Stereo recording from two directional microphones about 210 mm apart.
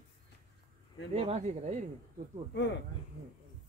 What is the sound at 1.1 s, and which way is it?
Speech, 30° right (ahead or behind).